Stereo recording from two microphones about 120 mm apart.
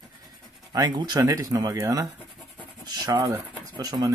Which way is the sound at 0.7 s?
35° right (ahead or behind).